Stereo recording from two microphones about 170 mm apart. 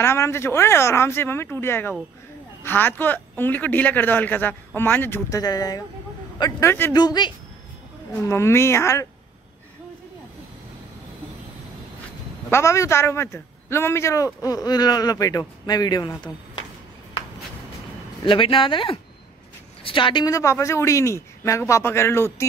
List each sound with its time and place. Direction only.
0.0 s speech: 15° left (ahead or behind)
6.7 s speech: 15° left (ahead or behind)
7.0 s a man's voice: 25° left (ahead or behind)
12.4 s a man's voice: 15° left (ahead or behind)
18.2 s speech: 30° left (ahead or behind); by 22.5 s 15° left (ahead or behind)